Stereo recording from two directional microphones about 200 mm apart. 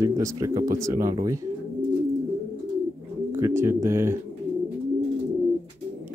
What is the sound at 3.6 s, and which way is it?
Speech, 15° right (ahead or behind).